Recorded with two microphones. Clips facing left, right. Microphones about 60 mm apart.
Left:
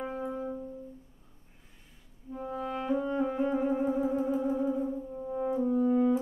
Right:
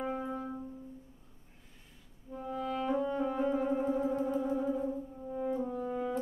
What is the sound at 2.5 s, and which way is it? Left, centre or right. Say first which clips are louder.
Music: left 1 dB; centre.